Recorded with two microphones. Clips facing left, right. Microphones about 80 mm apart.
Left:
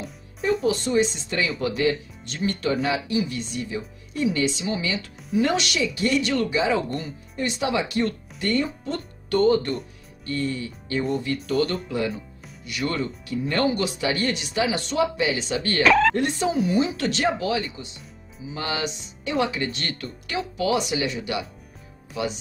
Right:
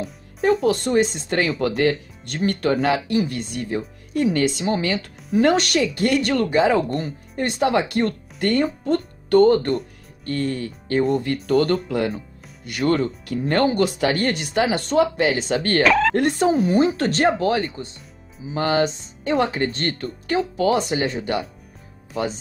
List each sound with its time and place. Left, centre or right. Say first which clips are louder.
0.4 s speech: right 4 dB; right
15.8 s speech: left 1 dB; centre
16.2 s speech: right 5 dB; right